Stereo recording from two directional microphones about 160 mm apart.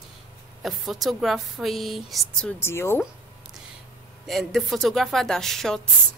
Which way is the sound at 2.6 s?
15° left (ahead or behind).